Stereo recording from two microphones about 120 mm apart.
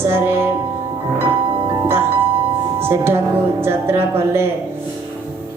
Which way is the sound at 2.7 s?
20° right (ahead or behind).